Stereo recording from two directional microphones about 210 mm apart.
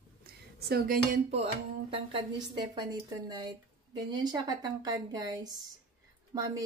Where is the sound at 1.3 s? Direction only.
25° right (ahead or behind).